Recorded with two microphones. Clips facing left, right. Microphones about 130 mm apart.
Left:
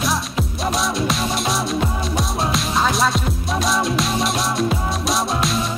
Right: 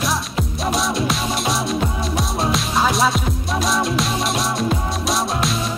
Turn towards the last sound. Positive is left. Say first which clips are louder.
# even
turn(degrees=0)  # may be behind; listen again after turning